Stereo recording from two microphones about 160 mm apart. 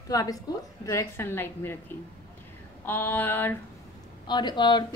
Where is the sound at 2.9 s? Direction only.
15° left (ahead or behind).